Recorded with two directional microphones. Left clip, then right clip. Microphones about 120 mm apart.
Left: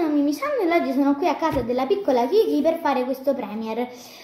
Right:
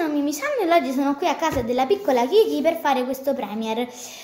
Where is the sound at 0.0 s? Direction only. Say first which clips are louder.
Left 1 dB; 15° right (ahead or behind).